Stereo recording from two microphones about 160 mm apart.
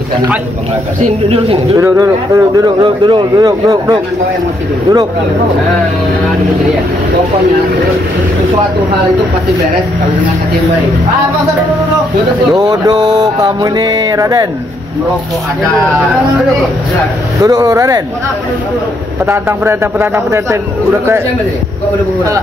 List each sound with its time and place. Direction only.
1.0 s speech: 40° right (ahead or behind)
1.8 s speech: 20° right (ahead or behind)
12.5 s speech: 25° right (ahead or behind)
17.4 s speech: 20° right (ahead or behind)
19.2 s speech: 15° right (ahead or behind)